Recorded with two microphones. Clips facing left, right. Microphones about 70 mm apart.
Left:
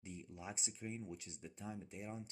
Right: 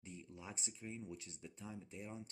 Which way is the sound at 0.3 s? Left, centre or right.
Centre.